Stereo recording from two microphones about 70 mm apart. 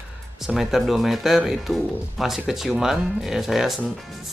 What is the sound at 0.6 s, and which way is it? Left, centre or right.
Speech, centre.